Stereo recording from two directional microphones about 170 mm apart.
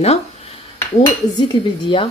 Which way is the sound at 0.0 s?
40° left (ahead or behind).